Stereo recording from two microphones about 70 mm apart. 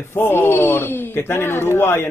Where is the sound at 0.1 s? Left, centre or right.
Left.